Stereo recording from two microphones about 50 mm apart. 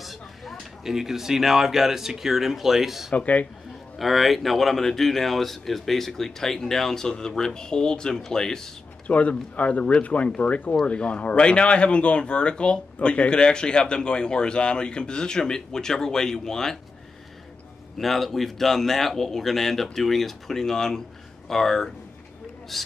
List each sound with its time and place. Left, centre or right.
0.0 s speech: centre
3.2 s speech: left
4.0 s speech: centre
9.0 s speech: left; by 16.7 s centre
17.9 s speech: centre